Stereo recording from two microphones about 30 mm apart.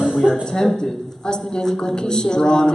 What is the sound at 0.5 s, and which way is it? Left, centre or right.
A man's voice, centre.